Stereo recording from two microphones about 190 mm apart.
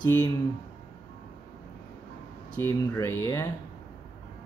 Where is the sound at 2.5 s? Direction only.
15° left (ahead or behind).